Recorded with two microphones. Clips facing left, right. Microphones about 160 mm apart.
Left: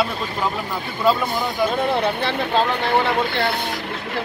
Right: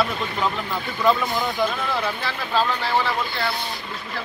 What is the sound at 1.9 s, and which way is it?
Speech, 60° left (ahead or behind).